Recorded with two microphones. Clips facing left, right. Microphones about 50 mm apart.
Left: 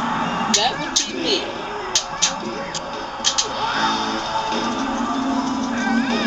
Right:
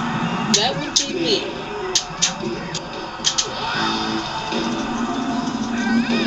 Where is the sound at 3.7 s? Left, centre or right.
Left.